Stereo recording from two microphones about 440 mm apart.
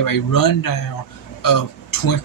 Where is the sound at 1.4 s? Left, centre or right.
Left.